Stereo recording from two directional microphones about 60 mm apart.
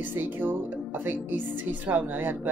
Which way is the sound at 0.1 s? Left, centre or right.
Right.